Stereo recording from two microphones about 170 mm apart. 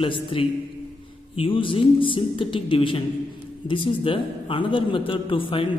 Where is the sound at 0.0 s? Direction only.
30° left (ahead or behind).